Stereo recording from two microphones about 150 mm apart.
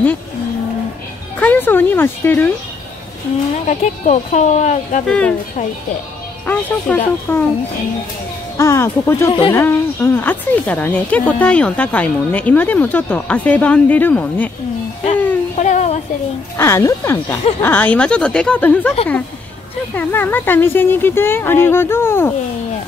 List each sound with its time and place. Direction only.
1.4 s speech: 10° left (ahead or behind)
3.6 s speech: 50° left (ahead or behind)
5.0 s speech: 5° left (ahead or behind)
6.4 s speech: 10° left (ahead or behind)
8.5 s speech: 20° left (ahead or behind)
15.5 s a sound: 50° left (ahead or behind)
16.5 s speech: 15° left (ahead or behind)